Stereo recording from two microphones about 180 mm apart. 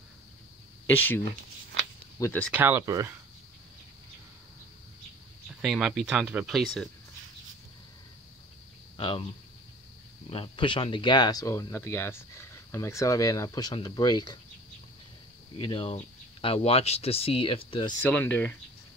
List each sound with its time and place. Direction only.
0.8 s speech: 10° left (ahead or behind)
1.2 s a sound: 80° right
2.1 s speech: 15° left (ahead or behind)
2.5 s speech: 15° right (ahead or behind)
5.6 s speech: 5° right (ahead or behind)
8.9 s speech: 30° left (ahead or behind)
10.3 s speech: 30° left (ahead or behind)
15.5 s speech: 30° left (ahead or behind)
18.0 s speech: 10° left (ahead or behind)